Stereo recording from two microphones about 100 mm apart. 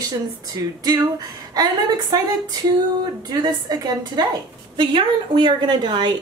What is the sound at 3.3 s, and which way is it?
Speech, 40° right (ahead or behind).